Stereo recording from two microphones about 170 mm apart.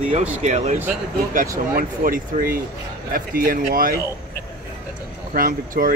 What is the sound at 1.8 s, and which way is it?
Speech, 55° right (ahead or behind).